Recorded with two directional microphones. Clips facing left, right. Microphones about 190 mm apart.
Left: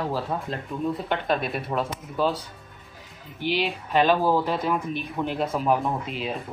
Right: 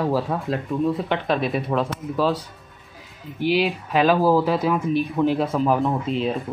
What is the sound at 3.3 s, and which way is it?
Speech, centre (ahead or behind).